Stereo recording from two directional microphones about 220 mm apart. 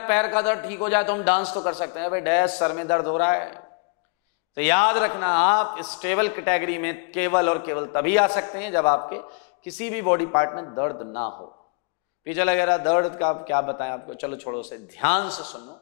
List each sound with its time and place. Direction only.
0.0 s a man's voice: 15° left (ahead or behind)
4.6 s a man's voice: 15° left (ahead or behind)